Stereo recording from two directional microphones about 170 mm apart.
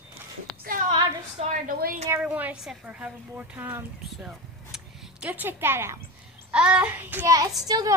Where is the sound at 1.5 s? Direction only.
55° right (ahead or behind).